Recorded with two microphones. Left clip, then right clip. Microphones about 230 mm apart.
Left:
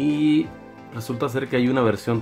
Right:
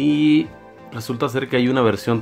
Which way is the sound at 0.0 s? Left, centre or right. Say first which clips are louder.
Right 4 dB; centre.